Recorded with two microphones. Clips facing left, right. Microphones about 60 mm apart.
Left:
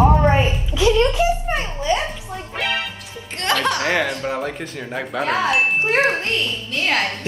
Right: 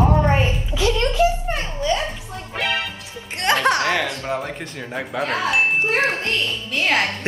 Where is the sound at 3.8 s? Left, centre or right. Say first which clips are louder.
Left 2 dB; left.